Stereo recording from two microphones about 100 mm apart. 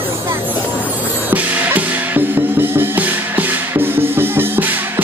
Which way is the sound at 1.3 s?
20° right (ahead or behind).